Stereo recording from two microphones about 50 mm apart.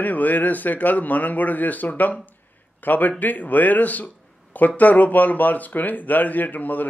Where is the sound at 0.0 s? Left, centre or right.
Left.